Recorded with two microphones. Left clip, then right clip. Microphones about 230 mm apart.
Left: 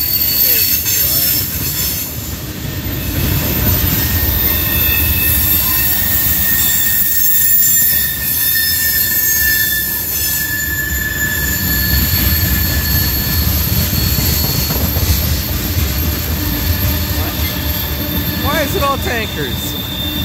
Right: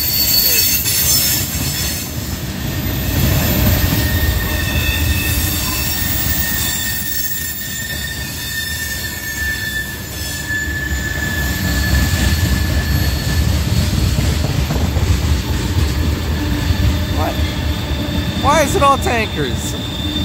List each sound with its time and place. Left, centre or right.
18.5 s vehicle: centre